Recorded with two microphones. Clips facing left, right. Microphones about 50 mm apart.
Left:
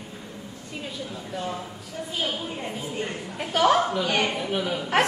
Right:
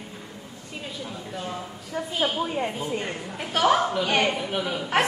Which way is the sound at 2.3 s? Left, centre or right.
Right.